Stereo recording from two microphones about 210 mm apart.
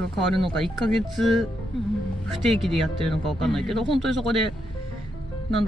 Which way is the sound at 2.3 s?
Centre (ahead or behind).